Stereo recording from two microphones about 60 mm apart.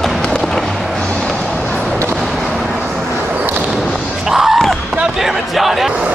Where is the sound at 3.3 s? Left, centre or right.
Right.